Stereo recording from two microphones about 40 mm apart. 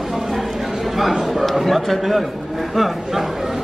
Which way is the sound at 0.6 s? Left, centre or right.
Centre.